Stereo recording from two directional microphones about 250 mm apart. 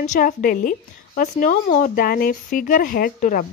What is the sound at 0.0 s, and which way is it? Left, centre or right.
A woman's voice, left.